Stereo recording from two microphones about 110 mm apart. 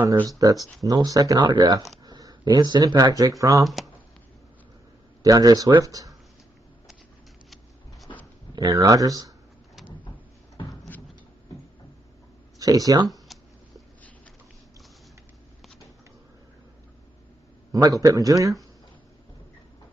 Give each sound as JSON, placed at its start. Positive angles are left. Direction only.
{"t": 0.3, "sound": "speech", "side_deg": -35}
{"t": 3.6, "sound": "speech", "side_deg": 0}
{"t": 5.2, "sound": "speech", "side_deg": -35}
{"t": 8.5, "sound": "speech", "side_deg": -35}
{"t": 12.5, "sound": "speech", "side_deg": -35}
{"t": 17.8, "sound": "speech", "side_deg": -30}